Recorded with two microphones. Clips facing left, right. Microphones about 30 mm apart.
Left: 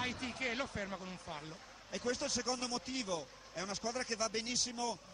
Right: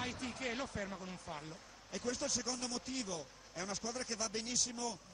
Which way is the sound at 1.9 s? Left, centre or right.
Left.